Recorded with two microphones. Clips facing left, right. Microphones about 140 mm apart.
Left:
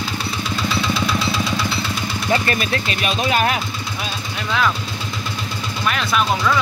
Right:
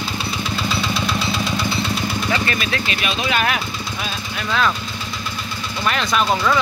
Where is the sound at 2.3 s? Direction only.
40° left (ahead or behind).